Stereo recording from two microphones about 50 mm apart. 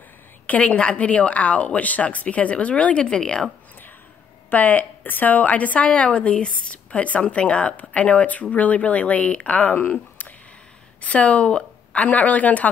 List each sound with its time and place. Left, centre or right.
0.5 s a woman's voice: left
4.5 s a woman's voice: left
11.0 s a woman's voice: left